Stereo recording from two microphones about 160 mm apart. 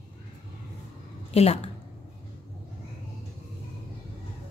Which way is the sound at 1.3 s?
40° left (ahead or behind).